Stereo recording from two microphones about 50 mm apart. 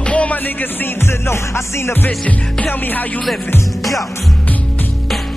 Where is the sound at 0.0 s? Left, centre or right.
Left.